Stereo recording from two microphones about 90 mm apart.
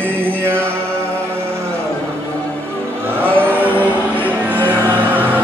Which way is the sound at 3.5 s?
20° right (ahead or behind).